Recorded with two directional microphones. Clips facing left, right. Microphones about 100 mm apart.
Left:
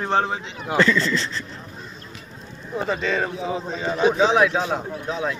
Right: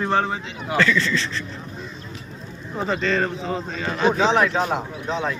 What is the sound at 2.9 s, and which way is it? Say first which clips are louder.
A man's voice: right 2 dB; 10° left (ahead or behind).